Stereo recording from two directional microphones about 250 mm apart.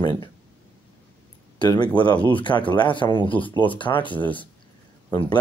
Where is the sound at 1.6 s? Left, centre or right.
Centre.